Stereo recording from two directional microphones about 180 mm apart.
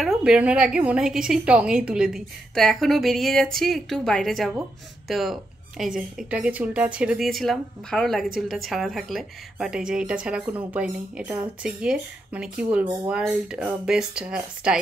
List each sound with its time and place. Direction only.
0.0 s a woman's voice: centre (ahead or behind)
12.8 s speech: 20° right (ahead or behind)
13.1 s a woman's voice: 5° right (ahead or behind)